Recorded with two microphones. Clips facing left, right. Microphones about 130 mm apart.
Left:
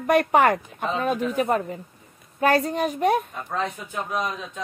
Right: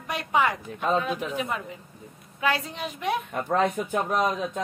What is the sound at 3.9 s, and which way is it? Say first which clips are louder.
Speech: right 3 dB; 50° right (ahead or behind).